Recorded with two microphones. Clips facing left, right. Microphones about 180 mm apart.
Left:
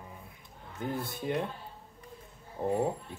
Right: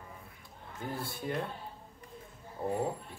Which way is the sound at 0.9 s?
20° left (ahead or behind).